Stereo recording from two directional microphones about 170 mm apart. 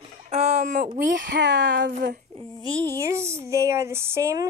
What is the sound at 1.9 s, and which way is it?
Speech, 50° right (ahead or behind).